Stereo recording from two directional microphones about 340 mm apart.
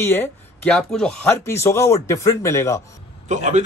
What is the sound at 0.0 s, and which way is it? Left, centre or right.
Speech, centre.